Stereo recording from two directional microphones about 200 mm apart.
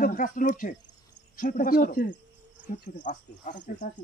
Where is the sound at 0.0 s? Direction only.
40° left (ahead or behind).